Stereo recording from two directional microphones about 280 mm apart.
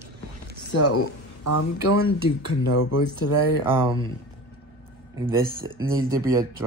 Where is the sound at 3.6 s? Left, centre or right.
Centre.